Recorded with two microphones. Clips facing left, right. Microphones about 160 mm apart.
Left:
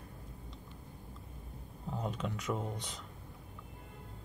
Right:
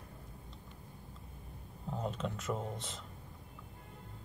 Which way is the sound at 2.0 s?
Centre (ahead or behind).